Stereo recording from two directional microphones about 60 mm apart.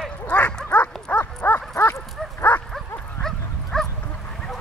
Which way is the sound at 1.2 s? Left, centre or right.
Left.